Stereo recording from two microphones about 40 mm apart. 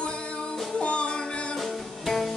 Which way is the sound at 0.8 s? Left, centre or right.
Left.